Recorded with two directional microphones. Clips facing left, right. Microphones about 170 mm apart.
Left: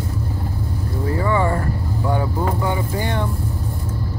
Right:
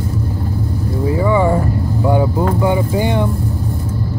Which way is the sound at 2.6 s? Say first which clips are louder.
Right 7 dB; 15° right (ahead or behind).